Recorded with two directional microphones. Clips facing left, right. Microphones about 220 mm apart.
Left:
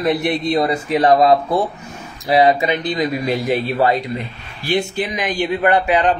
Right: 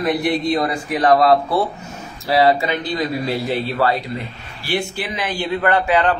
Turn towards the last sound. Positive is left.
turn(degrees=20)  # may be behind; listen again after turning